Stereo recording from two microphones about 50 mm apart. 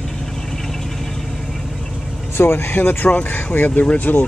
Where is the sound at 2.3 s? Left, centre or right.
Left.